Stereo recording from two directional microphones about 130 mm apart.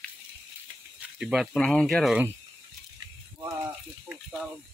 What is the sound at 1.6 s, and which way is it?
Speech, 5° left (ahead or behind).